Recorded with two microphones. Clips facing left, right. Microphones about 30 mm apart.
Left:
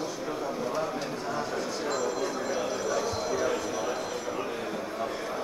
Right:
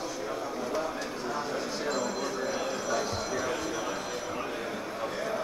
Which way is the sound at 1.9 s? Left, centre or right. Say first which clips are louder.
Left 2 dB; centre.